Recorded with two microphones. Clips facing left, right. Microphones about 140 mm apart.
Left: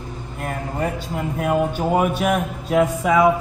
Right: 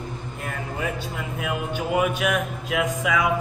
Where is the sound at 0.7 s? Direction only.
45° left (ahead or behind).